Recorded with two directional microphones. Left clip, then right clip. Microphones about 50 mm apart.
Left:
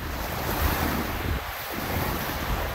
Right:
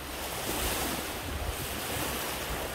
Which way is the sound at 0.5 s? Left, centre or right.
Left.